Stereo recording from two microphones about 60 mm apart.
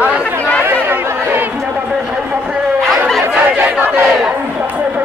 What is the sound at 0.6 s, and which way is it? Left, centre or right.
Chatter, right.